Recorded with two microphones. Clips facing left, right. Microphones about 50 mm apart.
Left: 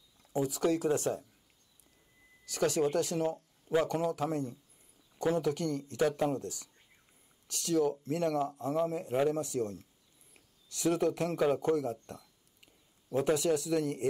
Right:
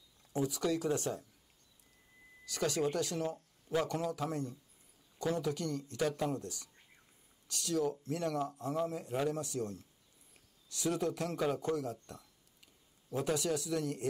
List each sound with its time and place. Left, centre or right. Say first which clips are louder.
0.5 s speech: left 5 dB; left
2.5 s speech: left 4 dB; left
5.4 s speech: left 4 dB; left
5.9 s speech: left 5 dB; left
7.6 s speech: left 5 dB; left
11.3 s speech: left 6 dB; left
13.4 s speech: left 5 dB; left